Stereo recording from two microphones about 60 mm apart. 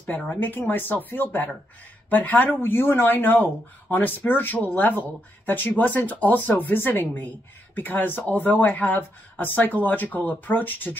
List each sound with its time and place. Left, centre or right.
0.0 s speech: left